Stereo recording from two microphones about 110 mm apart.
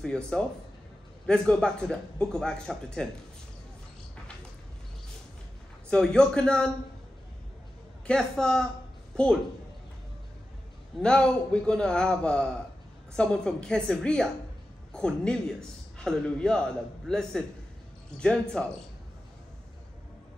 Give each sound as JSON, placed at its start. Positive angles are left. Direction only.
{"t": 0.0, "sound": "a man's voice", "side_deg": 5}
{"t": 5.9, "sound": "a man's voice", "side_deg": 5}
{"t": 8.1, "sound": "a woman's voice", "side_deg": 5}
{"t": 11.0, "sound": "a man's voice", "side_deg": 10}